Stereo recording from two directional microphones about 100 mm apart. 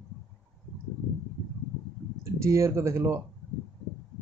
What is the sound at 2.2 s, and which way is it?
Speech, 30° right (ahead or behind).